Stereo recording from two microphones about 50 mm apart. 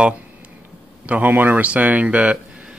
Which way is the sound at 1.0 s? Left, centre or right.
Right.